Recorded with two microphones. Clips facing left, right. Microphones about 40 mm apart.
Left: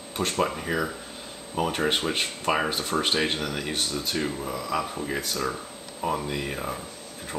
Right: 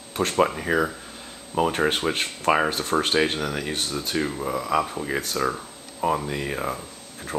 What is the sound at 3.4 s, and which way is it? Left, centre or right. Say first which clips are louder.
Speech: right 2 dB; centre.